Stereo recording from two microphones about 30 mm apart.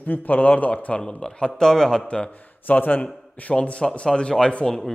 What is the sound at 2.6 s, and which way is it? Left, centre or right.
Speech, left.